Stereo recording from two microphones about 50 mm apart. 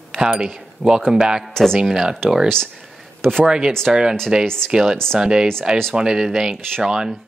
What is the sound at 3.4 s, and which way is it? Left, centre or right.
Speech, centre.